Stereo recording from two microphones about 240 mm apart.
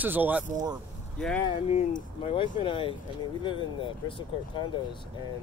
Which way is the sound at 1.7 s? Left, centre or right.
Left.